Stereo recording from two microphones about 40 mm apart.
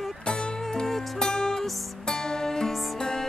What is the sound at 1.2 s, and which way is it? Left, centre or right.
Music, centre.